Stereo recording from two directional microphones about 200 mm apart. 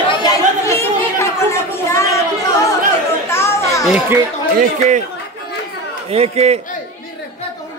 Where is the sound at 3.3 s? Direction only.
10° left (ahead or behind).